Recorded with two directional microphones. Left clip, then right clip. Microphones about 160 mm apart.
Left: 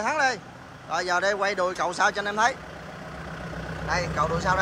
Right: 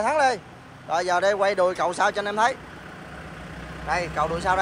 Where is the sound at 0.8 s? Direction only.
10° left (ahead or behind).